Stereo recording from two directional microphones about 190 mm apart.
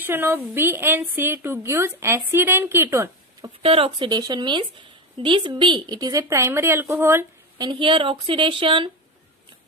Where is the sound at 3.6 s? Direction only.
30° right (ahead or behind).